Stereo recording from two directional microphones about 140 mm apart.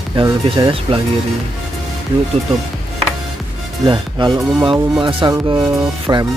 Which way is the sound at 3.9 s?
35° right (ahead or behind).